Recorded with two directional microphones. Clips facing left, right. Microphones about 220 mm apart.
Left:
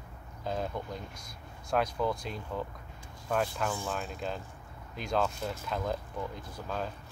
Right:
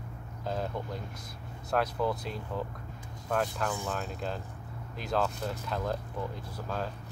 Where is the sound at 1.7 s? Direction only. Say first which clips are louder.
Even; 5° right (ahead or behind).